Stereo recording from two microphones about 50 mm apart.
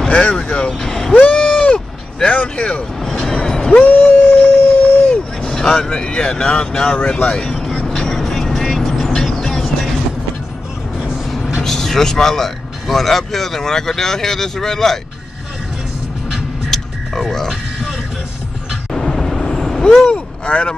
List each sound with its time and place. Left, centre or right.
0.1 s speech: left
0.7 s vehicle: centre
1.1 s vehicle: left
3.0 s music: centre
3.3 s vehicle: centre
3.7 s a sound: left
4.7 s vehicle: left
5.4 s speech: centre
7.4 s vehicle: centre
11.2 s vehicle: centre
11.6 s speech: centre
16.7 s music: centre
18.9 s vehicle: centre
20.1 s vehicle: left